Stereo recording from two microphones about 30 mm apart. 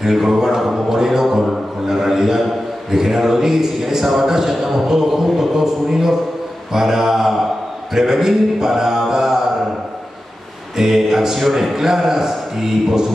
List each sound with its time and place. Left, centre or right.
0.0 s a man's voice: centre
0.6 s a sound: centre
2.9 s a man's voice: centre
6.7 s mantra: centre
7.9 s a man's voice: centre
9.1 s mantra: centre
10.8 s a sound: centre
11.3 s a man's voice: centre
11.7 s a man's voice: centre